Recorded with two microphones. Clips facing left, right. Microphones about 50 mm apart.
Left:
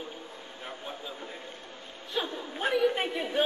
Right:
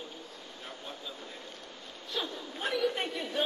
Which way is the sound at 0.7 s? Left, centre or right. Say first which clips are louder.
Left 4 dB; left.